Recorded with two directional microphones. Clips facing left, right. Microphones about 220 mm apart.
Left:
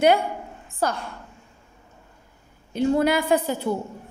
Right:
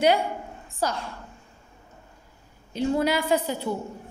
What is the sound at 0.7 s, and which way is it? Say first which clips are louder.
Speech: left 2 dB; 55° left (ahead or behind).